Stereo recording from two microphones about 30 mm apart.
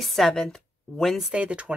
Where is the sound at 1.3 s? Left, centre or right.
Right.